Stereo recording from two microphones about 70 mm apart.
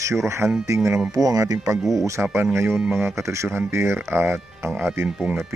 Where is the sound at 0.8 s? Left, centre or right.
Right.